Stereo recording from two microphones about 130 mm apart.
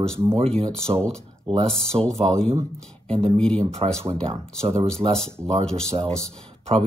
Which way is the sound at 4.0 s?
45° right (ahead or behind).